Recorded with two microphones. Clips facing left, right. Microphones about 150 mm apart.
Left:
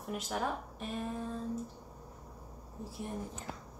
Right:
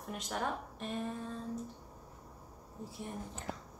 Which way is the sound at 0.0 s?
5° left (ahead or behind).